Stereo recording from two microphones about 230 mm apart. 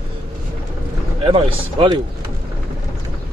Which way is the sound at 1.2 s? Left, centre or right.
Right.